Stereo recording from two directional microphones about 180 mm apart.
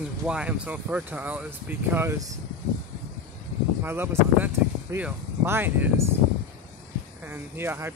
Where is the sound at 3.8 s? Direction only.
15° right (ahead or behind).